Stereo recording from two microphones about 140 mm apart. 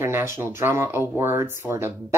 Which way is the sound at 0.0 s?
20° right (ahead or behind).